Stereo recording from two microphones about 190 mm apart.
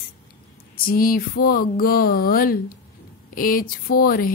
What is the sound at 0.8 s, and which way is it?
Speech, 50° left (ahead or behind).